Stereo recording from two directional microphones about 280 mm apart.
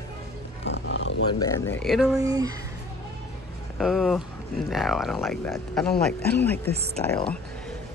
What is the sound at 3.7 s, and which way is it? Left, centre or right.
A man's voice, centre.